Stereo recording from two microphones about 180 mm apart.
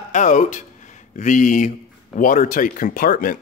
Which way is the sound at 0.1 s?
45° left (ahead or behind).